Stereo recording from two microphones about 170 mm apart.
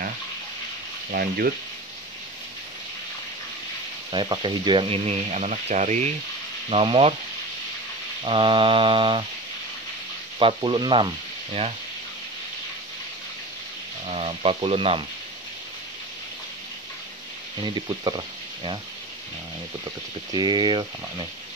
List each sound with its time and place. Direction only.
1.1 s speech: 60° right (ahead or behind)
4.1 s speech: 30° right (ahead or behind)
8.2 s speech: 30° right (ahead or behind)
10.4 s speech: 30° right (ahead or behind)
14.0 s speech: 35° right (ahead or behind)
17.6 s speech: 25° right (ahead or behind)
20.3 s speech: 25° right (ahead or behind)